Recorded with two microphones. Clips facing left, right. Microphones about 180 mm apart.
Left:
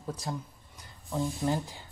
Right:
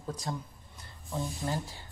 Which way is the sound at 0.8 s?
15° left (ahead or behind).